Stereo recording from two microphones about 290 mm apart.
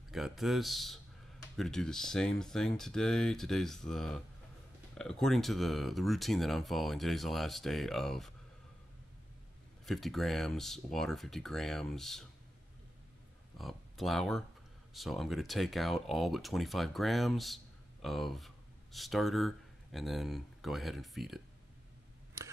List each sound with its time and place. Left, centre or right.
0.1 s speech: centre
9.8 s speech: centre
13.6 s speech: centre